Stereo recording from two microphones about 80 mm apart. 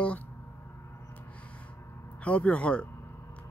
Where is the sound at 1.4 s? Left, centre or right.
Centre.